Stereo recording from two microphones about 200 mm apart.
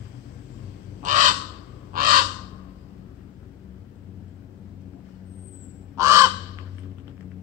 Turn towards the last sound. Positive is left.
turn(degrees=-15)  # may be behind; listen again after turning